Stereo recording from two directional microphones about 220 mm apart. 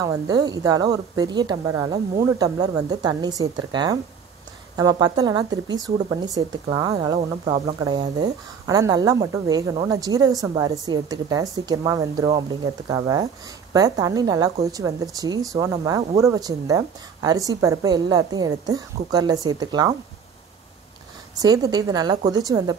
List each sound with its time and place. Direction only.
0.0 s speech: 15° right (ahead or behind)
21.4 s speech: 15° right (ahead or behind)